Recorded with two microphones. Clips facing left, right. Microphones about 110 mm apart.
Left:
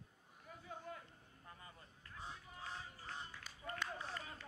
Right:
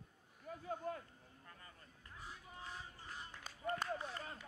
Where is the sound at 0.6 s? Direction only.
50° right (ahead or behind).